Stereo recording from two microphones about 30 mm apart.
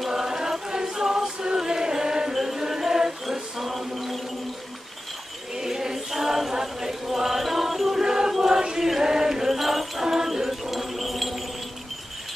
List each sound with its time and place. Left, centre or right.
0.1 s choir: centre
2.3 s chant: centre
3.3 s mantra: centre
5.6 s a sound: centre
5.9 s chant: centre
8.0 s chant: centre
9.5 s basketball bounce: centre
10.2 s wind chime: centre